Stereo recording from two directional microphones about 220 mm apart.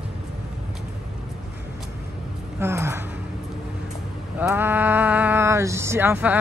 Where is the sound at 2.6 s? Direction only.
10° right (ahead or behind).